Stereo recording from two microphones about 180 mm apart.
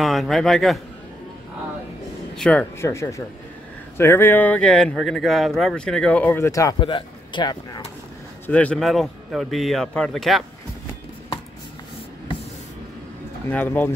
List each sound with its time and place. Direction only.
0.0 s a man's voice: centre (ahead or behind)
2.3 s speech: 5° left (ahead or behind)
2.8 s speech: 15° left (ahead or behind)
8.5 s a man's voice: 5° left (ahead or behind)
13.5 s speech: 10° left (ahead or behind)